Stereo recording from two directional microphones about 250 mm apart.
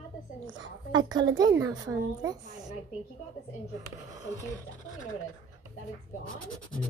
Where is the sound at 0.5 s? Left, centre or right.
Centre.